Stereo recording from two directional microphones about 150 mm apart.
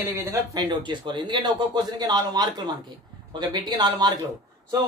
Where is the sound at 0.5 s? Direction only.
30° right (ahead or behind).